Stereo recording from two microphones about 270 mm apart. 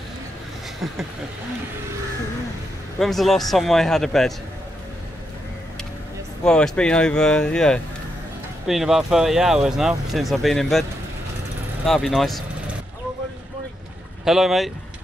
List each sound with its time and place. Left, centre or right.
3.0 s speech: centre
6.4 s speech: centre
14.2 s speech: centre